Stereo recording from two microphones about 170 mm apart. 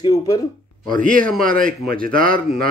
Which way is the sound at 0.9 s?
50° right (ahead or behind).